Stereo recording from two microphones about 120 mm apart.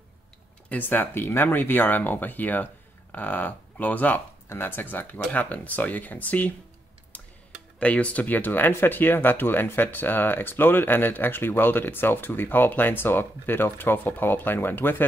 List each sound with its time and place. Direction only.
0.7 s speech: 15° left (ahead or behind)
7.1 s tick-tock: 10° left (ahead or behind)
7.8 s speech: 10° left (ahead or behind)